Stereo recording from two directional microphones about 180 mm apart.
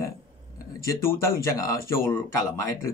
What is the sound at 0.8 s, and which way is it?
Speech, 15° left (ahead or behind).